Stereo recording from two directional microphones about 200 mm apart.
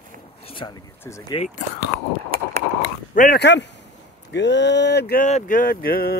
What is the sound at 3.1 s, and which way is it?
Speech, 45° left (ahead or behind).